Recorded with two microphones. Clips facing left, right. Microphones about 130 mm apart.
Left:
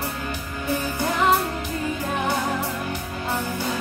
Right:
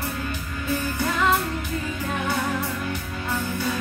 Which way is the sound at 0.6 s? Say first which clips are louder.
Left 1 dB; 15° left (ahead or behind).